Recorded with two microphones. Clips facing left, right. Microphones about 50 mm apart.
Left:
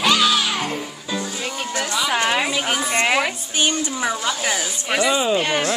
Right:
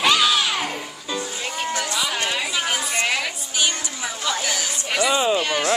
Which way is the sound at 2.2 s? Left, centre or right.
Left.